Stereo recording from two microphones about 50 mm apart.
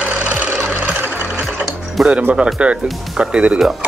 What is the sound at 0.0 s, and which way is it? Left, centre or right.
Music, right.